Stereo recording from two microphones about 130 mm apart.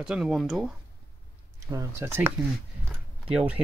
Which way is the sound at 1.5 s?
25° right (ahead or behind).